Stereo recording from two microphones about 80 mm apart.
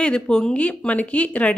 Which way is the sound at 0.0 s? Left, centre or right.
Centre.